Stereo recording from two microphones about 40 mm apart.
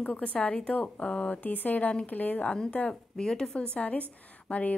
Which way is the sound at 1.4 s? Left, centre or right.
Left.